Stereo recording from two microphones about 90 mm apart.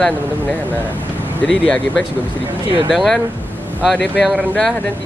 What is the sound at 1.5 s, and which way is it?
Speech, 10° left (ahead or behind).